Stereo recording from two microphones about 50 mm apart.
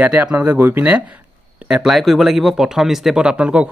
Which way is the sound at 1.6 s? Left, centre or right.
Centre.